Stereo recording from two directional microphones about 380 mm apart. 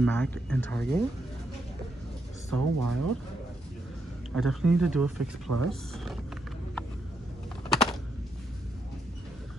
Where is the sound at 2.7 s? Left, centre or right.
Right.